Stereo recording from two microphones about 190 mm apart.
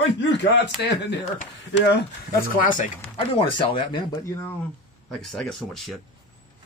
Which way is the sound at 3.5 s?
25° left (ahead or behind).